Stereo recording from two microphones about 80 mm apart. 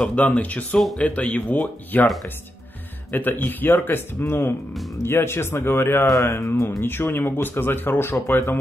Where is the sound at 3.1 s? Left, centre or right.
Left.